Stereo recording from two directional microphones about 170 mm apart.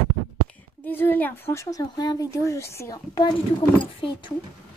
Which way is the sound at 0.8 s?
10° left (ahead or behind).